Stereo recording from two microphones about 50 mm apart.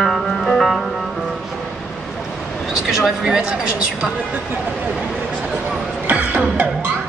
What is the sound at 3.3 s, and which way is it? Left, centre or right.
Speech, right.